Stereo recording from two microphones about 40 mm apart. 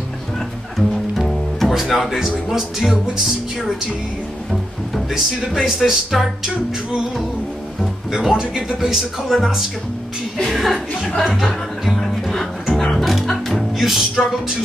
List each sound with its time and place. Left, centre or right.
0.7 s music: centre
2.5 s speech: centre
4.5 s music: centre
5.4 s speech: centre
8.1 s speech: centre
8.8 s a woman's voice: centre
11.3 s music: centre